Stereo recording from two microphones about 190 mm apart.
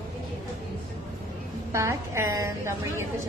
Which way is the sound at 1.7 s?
15° right (ahead or behind).